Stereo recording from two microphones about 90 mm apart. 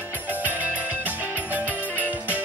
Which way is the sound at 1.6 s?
20° left (ahead or behind).